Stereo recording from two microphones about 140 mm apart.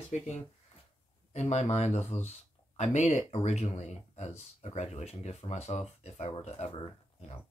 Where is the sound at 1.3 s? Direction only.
50° left (ahead or behind).